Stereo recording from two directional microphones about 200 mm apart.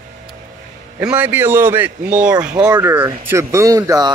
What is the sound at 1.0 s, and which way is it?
Speech, 10° right (ahead or behind).